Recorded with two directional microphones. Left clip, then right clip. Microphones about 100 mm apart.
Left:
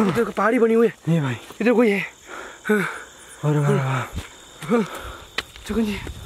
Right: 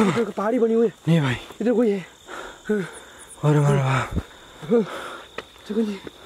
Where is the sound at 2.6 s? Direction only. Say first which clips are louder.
Left 5 dB; 50° left (ahead or behind).